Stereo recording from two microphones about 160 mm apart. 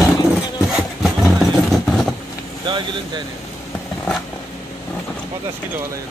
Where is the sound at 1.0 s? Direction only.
Centre (ahead or behind).